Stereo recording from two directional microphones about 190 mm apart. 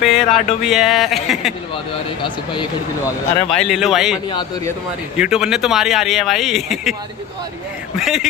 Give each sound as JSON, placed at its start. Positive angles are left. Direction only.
{"t": 0.0, "sound": "speech", "side_deg": 0}
{"t": 2.2, "sound": "speech", "side_deg": 25}
{"t": 3.4, "sound": "speech", "side_deg": 0}
{"t": 4.3, "sound": "speech", "side_deg": 25}
{"t": 5.1, "sound": "speech", "side_deg": -5}
{"t": 8.0, "sound": "speech", "side_deg": 0}